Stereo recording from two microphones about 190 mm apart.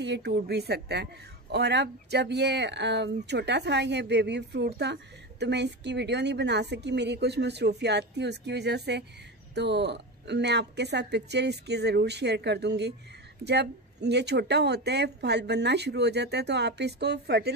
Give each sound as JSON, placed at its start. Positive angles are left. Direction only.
{"t": 0.0, "sound": "speech", "side_deg": -60}